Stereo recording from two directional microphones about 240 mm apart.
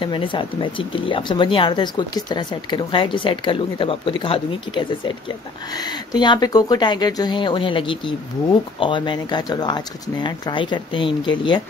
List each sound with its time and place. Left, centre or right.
0.0 s speech: left